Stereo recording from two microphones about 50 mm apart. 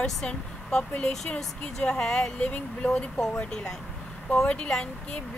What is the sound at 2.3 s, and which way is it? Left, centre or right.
Speech, left.